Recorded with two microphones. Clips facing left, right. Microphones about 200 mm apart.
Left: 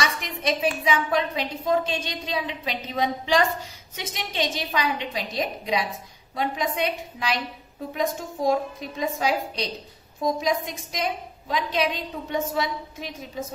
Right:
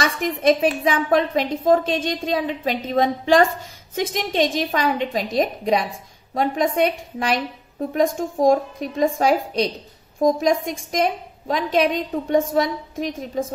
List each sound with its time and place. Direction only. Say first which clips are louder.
0.0 s a woman's voice: right 8 dB; 50° right (ahead or behind)